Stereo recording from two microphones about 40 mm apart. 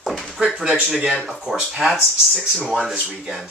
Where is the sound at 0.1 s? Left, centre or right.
Centre.